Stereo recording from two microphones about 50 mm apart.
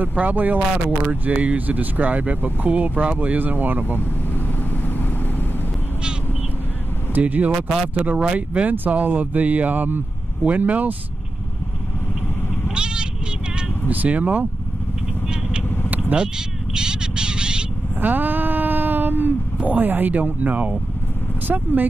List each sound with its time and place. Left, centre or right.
0.1 s speech: right
7.2 s speech: right
12.6 s bleat: centre
13.8 s speech: right
15.9 s cat: right
16.7 s bird: centre
18.0 s speech: right